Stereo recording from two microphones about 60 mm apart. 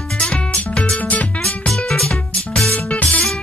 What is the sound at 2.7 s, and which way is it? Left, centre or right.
Music, left.